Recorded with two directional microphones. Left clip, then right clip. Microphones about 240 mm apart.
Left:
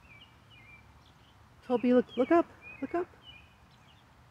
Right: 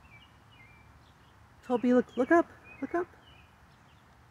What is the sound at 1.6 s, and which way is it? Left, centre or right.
Speech, centre.